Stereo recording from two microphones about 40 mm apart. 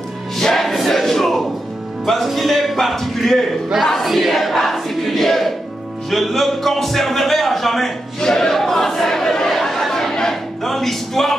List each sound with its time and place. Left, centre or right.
0.4 s choir: centre
2.2 s a man's voice: centre
3.8 s a sound: centre
6.0 s a man's voice: centre
8.2 s chatter: centre